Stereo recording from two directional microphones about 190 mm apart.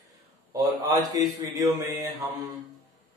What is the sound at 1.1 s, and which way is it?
Speech, 20° right (ahead or behind).